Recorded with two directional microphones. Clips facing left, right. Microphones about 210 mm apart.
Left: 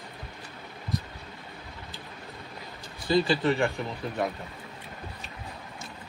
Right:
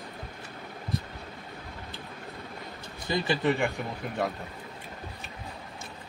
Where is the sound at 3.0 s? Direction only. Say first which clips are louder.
Left 5 dB; 20° right (ahead or behind).